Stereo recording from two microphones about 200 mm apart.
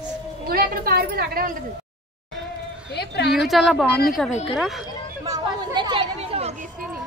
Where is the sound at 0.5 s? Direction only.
50° right (ahead or behind).